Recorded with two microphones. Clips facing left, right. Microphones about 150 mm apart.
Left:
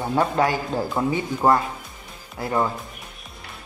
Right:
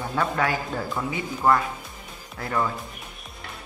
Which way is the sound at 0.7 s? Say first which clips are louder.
Left 5 dB; 20° left (ahead or behind).